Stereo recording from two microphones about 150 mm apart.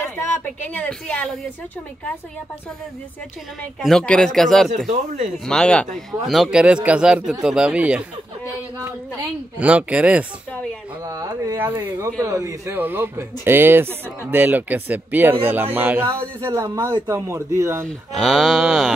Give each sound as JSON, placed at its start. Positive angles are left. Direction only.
{"t": 0.0, "sound": "speech", "side_deg": 15}
{"t": 3.8, "sound": "speech", "side_deg": 5}
{"t": 4.8, "sound": "speech", "side_deg": -55}
{"t": 5.5, "sound": "speech", "side_deg": 5}
{"t": 9.6, "sound": "speech", "side_deg": -10}
{"t": 10.5, "sound": "speech", "side_deg": 5}
{"t": 11.1, "sound": "speech", "side_deg": -25}
{"t": 17.8, "sound": "speech", "side_deg": 0}